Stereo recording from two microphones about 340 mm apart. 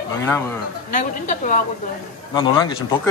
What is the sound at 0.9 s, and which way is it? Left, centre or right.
A woman's voice, left.